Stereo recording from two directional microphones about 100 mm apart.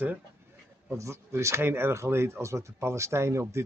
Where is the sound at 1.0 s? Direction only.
30° right (ahead or behind).